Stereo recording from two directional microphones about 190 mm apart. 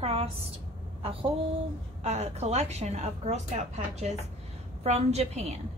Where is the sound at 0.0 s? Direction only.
30° right (ahead or behind).